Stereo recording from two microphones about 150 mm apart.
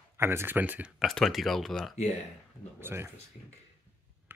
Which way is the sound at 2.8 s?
15° right (ahead or behind).